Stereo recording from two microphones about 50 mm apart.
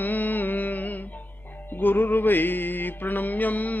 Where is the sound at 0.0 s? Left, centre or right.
Left.